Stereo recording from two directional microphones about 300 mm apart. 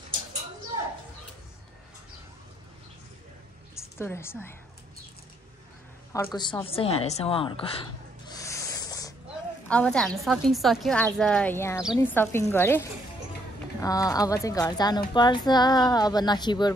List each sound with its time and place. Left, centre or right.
3.7 s a woman's voice: centre
6.1 s speech: centre
8.3 s snake: centre
9.7 s a woman's voice: centre